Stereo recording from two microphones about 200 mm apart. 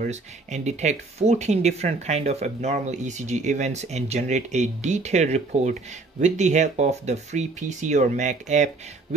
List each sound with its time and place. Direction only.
0.0 s speech: 35° right (ahead or behind)